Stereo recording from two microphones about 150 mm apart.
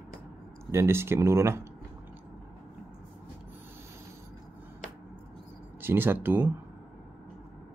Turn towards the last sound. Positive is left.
turn(degrees=-15)  # may be behind; listen again after turning